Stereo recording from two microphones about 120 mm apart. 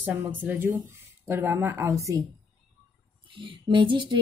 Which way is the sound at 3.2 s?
45° right (ahead or behind).